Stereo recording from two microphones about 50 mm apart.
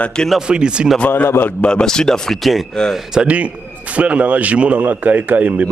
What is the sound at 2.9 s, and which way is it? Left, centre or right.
Speech, centre.